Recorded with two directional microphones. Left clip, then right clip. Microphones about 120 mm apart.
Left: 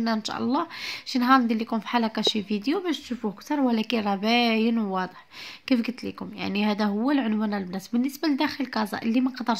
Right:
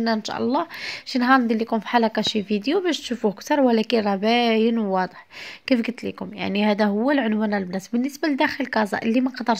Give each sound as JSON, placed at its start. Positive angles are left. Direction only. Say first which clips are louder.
{"t": 0.0, "sound": "speech", "louder": "right 4 dB", "side_deg": -25}